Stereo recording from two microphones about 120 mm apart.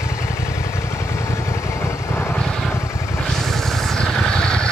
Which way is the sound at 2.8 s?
25° left (ahead or behind).